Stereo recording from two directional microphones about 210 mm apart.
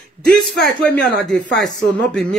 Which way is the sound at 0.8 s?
5° left (ahead or behind).